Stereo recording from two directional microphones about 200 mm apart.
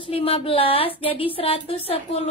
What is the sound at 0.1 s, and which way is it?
A woman's voice, 30° left (ahead or behind).